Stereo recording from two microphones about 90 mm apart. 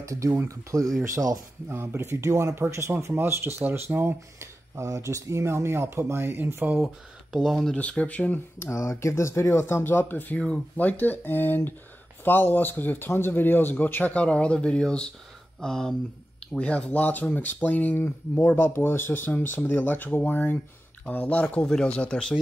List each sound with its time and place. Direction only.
0.0 s speech: 35° right (ahead or behind)
1.7 s speech: 25° right (ahead or behind)
7.3 s speech: centre (ahead or behind)
7.7 s speech: 15° left (ahead or behind)